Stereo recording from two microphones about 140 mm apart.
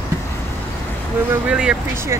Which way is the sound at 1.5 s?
5° right (ahead or behind).